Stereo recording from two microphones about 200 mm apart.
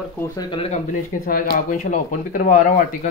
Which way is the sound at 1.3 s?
45° left (ahead or behind).